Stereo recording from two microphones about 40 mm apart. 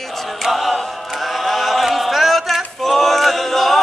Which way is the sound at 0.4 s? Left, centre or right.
Centre.